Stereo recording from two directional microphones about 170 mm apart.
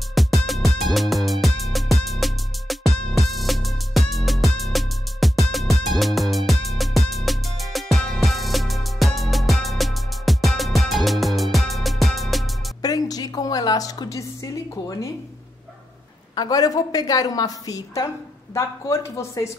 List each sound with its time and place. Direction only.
0.1 s music: centre (ahead or behind)
12.8 s a sound: 20° left (ahead or behind)
16.3 s a woman's voice: 20° left (ahead or behind)